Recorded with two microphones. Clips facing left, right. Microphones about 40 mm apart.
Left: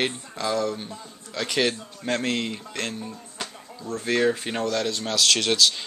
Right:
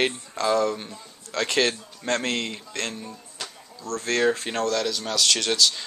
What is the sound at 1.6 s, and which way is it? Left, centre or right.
Speech, centre.